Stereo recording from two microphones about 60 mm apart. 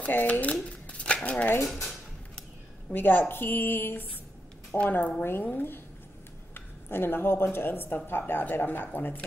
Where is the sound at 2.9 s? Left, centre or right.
Left.